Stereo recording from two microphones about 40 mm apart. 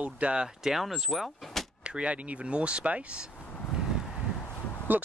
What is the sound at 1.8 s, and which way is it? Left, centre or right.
Speech, right.